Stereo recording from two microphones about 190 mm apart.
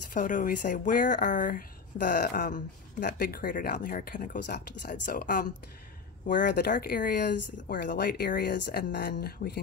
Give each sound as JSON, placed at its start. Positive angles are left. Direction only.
{"t": 0.1, "sound": "speech", "side_deg": 45}